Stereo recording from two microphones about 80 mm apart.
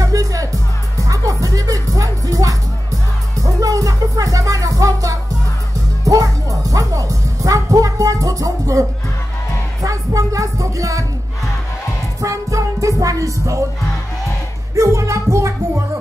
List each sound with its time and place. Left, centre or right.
0.0 s music: right
12.2 s music: right
14.8 s music: right